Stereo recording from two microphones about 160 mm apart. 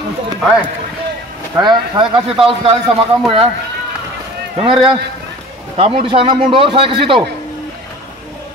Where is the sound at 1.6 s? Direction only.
30° right (ahead or behind).